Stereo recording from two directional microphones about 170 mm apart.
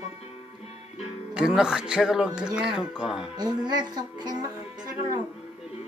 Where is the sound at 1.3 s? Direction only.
5° right (ahead or behind).